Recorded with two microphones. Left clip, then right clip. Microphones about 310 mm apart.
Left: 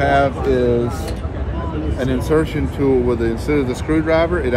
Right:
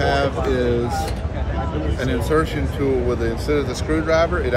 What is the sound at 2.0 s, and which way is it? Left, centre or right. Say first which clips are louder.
Speech: left 3 dB; centre.